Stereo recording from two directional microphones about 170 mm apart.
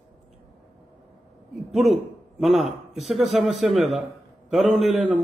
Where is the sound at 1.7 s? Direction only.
Centre (ahead or behind).